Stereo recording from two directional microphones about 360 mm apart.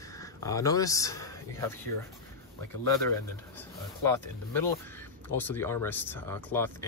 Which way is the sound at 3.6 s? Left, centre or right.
Centre.